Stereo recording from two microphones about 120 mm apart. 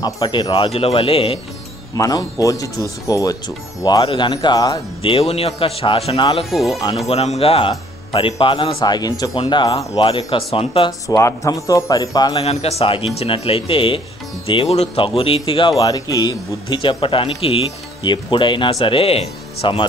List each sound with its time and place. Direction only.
0.0 s speech: 40° left (ahead or behind)
0.7 s speech: 55° left (ahead or behind)
2.0 s speech: 30° left (ahead or behind)
4.0 s speech: 45° left (ahead or behind)
5.0 s speech: 55° left (ahead or behind)
6.5 s speech: centre (ahead or behind)
7.1 s speech: 55° left (ahead or behind); by 10.0 s 40° left (ahead or behind)
10.0 s speech: 50° left (ahead or behind)
10.9 s speech: 30° left (ahead or behind)
12.4 s speech: 60° left (ahead or behind)
15.8 s speech: 35° left (ahead or behind); by 19.9 s 55° left (ahead or behind)